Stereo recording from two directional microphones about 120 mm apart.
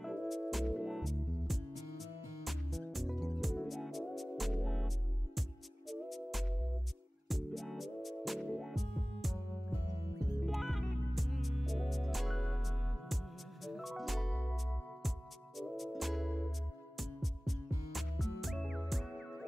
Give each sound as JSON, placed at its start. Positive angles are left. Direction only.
{"t": 0.0, "sound": "music", "side_deg": 0}
{"t": 10.4, "sound": "music", "side_deg": 0}